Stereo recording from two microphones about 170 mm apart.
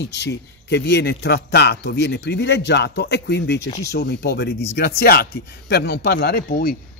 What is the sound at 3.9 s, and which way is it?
Speech, 80° left.